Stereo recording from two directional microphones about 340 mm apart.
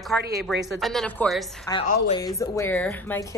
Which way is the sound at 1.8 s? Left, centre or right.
Left.